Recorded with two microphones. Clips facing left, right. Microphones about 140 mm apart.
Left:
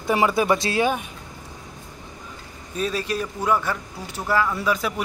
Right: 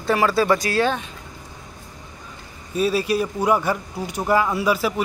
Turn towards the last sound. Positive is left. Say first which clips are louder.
# right 3 dB
turn(degrees=-5)  # may be behind; listen again after turning